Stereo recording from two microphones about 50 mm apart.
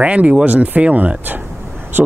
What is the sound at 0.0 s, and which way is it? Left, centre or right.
Speech, right.